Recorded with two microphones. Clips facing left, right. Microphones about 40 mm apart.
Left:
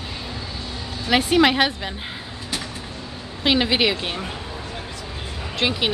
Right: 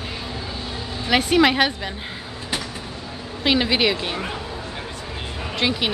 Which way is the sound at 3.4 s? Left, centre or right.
Centre.